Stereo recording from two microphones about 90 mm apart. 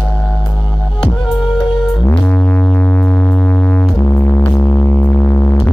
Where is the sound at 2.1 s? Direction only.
15° left (ahead or behind).